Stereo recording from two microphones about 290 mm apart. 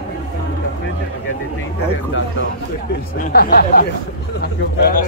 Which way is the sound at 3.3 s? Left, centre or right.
Left.